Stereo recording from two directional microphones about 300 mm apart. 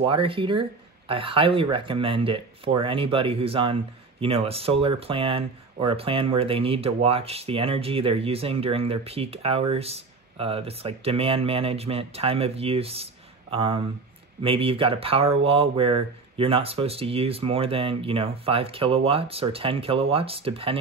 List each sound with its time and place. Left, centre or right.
0.0 s speech: centre